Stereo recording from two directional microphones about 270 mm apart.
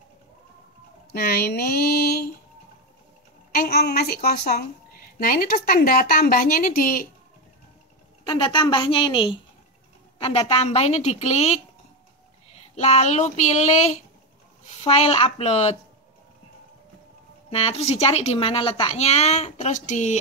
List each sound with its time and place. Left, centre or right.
1.1 s a woman's voice: left
3.5 s a woman's voice: left
8.2 s a woman's voice: centre
12.7 s speech: left
17.5 s speech: left